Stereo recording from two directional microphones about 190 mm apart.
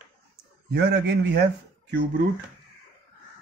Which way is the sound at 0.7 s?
60° right (ahead or behind).